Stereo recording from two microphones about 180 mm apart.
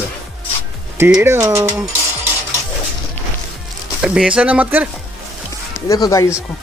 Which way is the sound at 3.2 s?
10° left (ahead or behind).